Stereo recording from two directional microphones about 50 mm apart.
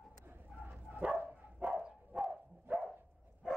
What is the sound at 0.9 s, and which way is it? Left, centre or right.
Dog, centre.